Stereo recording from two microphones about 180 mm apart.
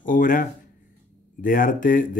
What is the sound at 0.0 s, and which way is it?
Speech, 50° left (ahead or behind).